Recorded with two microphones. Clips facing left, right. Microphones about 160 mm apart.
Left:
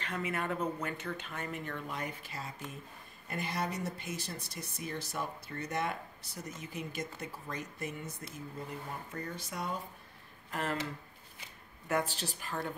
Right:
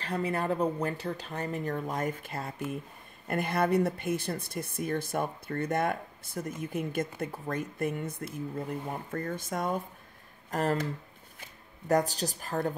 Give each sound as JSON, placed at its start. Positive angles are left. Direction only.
{"t": 0.0, "sound": "speech", "side_deg": -35}
{"t": 11.9, "sound": "speech", "side_deg": -40}